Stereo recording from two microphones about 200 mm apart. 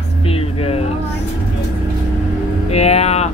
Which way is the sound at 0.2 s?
30° left (ahead or behind).